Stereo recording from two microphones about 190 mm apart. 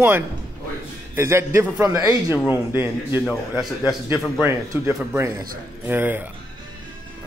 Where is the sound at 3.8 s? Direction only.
20° left (ahead or behind).